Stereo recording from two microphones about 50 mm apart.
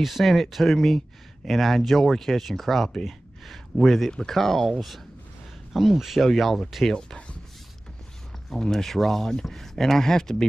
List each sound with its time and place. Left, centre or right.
0.0 s speech: centre
6.9 s speech: centre
8.5 s speech: centre